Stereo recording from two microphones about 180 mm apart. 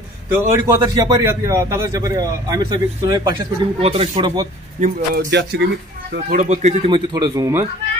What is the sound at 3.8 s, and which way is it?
Speech, 35° right (ahead or behind).